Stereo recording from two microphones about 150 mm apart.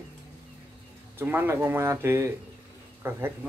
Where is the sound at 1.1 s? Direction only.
15° right (ahead or behind).